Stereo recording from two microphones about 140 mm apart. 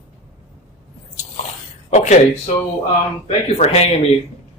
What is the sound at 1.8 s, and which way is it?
Speech, 55° left (ahead or behind).